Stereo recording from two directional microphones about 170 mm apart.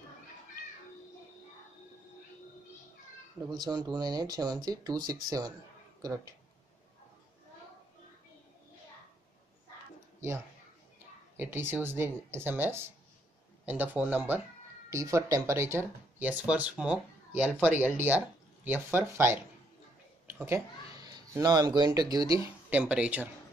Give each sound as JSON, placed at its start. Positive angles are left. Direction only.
{"t": 3.4, "sound": "speech", "side_deg": -25}
{"t": 11.3, "sound": "speech", "side_deg": -10}